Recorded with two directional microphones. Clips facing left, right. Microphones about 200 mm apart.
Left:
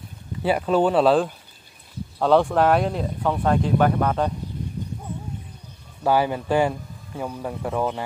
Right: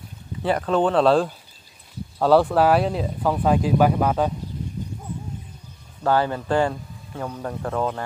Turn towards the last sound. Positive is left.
turn(degrees=5)  # may be behind; listen again after turning